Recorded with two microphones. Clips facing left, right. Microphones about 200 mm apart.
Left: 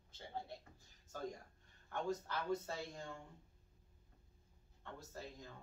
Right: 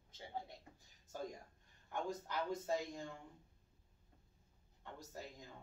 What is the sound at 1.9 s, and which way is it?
A man's voice, 15° right (ahead or behind).